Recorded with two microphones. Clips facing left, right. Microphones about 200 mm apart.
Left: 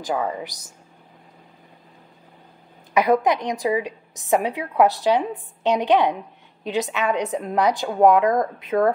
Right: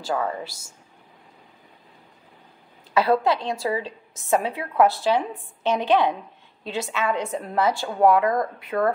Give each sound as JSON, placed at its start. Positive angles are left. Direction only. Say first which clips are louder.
{"t": 0.0, "sound": "a woman's voice", "louder": "left 1 dB", "side_deg": 15}
{"t": 2.9, "sound": "a woman's voice", "louder": "left 2 dB", "side_deg": 15}